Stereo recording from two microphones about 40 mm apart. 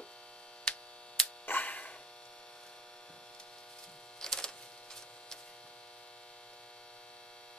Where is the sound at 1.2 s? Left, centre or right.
Left.